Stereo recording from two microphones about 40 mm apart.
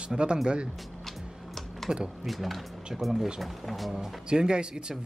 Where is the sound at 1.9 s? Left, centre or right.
Right.